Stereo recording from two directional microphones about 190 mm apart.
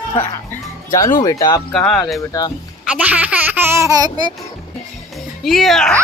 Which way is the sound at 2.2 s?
20° left (ahead or behind).